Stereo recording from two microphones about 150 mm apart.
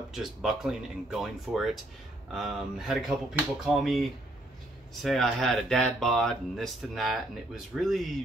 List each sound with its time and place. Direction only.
0.1 s speech: 5° right (ahead or behind)